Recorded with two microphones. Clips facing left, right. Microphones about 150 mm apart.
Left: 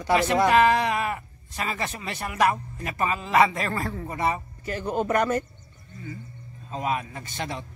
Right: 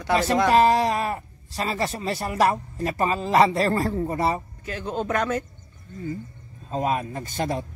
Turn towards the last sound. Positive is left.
turn(degrees=-45)  # may be behind; listen again after turning